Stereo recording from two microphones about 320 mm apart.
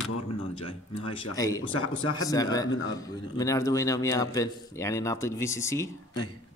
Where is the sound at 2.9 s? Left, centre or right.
Centre.